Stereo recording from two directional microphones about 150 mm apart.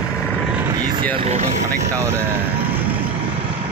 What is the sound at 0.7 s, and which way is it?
Vehicle, 25° right (ahead or behind).